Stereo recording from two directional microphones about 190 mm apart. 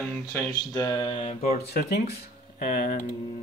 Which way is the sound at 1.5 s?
60° left (ahead or behind).